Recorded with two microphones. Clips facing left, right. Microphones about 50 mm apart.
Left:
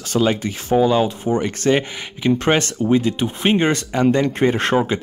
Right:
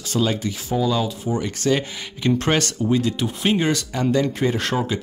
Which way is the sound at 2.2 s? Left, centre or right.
Left.